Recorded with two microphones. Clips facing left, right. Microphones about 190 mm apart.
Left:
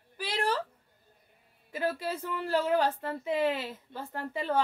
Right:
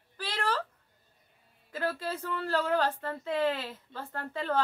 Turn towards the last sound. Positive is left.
turn(degrees=15)  # may be behind; listen again after turning